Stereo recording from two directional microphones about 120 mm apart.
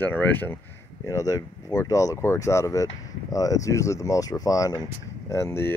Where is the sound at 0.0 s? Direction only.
15° left (ahead or behind).